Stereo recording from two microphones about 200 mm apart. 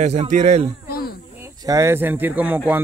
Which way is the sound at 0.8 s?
50° left (ahead or behind).